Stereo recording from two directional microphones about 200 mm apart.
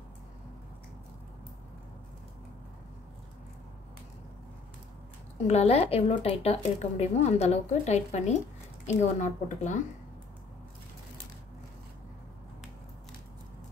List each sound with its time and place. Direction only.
5.5 s a woman's voice: 30° left (ahead or behind)